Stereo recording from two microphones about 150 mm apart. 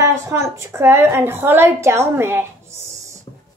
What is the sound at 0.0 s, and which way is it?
A woman's voice, 20° right (ahead or behind).